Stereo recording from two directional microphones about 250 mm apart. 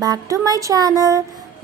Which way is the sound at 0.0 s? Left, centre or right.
Centre.